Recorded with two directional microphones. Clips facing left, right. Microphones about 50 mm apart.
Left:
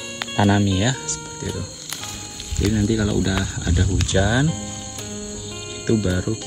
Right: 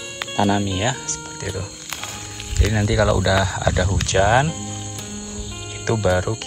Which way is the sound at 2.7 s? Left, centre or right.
Right.